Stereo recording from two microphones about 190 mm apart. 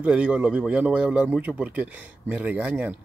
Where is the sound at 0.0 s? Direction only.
5° right (ahead or behind).